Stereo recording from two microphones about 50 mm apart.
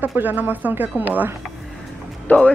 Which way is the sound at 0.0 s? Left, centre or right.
Right.